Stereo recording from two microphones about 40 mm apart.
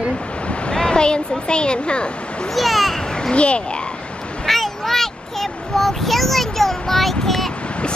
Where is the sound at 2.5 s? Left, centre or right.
Centre.